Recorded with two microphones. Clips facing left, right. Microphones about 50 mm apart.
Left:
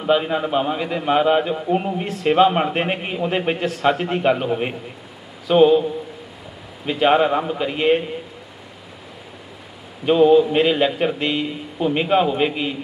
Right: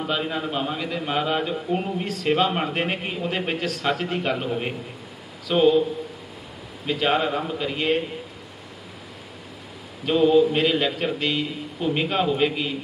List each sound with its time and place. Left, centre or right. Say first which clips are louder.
0.0 s a man's voice: left 7 dB; centre
6.9 s a man's voice: left 6 dB; centre
10.0 s a man's voice: left 4 dB; centre